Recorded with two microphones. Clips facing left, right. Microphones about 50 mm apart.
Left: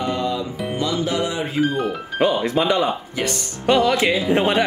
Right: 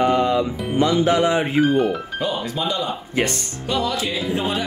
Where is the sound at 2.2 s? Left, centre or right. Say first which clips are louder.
Left 9 dB; left.